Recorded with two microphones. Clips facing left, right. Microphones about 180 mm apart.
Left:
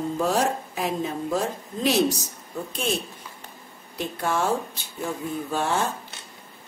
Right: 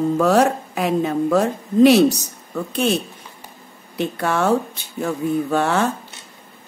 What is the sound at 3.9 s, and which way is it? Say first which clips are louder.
Speech: right 5 dB; 70° right (ahead or behind).